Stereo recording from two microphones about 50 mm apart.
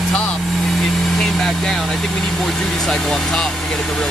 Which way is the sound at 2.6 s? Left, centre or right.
Centre.